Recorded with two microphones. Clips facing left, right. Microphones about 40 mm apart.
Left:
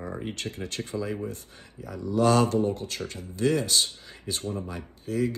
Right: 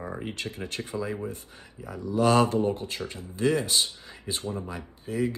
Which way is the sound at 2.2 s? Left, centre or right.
Right.